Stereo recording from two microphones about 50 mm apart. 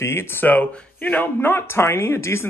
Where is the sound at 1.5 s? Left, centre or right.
Left.